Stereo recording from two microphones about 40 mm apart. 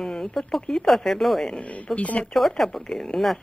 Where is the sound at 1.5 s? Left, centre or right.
Left.